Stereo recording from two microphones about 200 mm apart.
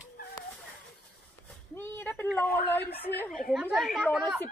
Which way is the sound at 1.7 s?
10° left (ahead or behind).